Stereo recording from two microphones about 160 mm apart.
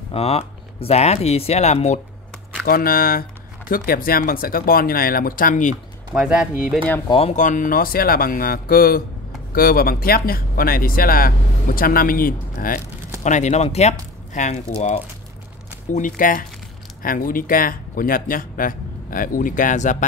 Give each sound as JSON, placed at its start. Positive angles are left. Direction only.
{"t": 0.1, "sound": "speech", "side_deg": 40}
{"t": 2.6, "sound": "speech", "side_deg": 65}
{"t": 6.1, "sound": "speech", "side_deg": -5}
{"t": 7.1, "sound": "speech", "side_deg": 40}
{"t": 13.2, "sound": "speech", "side_deg": 45}
{"t": 15.9, "sound": "speech", "side_deg": 55}